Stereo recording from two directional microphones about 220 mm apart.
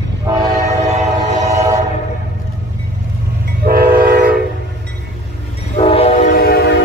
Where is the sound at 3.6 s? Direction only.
45° right (ahead or behind).